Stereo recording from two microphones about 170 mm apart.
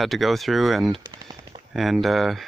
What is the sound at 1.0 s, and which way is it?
Machine gun, 25° right (ahead or behind).